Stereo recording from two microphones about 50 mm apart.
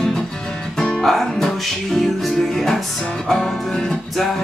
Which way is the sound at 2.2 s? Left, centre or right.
Centre.